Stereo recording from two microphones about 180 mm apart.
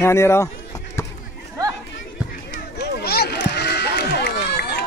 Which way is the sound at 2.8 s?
60° left (ahead or behind).